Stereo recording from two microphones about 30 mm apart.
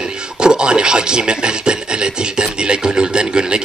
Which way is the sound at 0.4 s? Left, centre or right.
Right.